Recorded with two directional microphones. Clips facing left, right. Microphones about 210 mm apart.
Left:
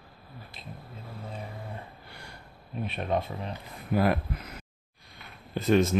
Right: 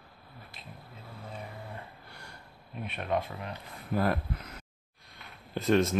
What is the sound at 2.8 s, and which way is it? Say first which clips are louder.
Speech: left 2 dB; 30° left (ahead or behind).